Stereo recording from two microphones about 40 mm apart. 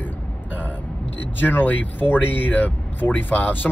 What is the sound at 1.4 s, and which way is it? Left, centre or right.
Speech, left.